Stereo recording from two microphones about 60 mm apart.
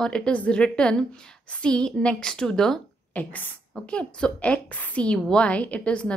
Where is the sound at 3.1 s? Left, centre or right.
Left.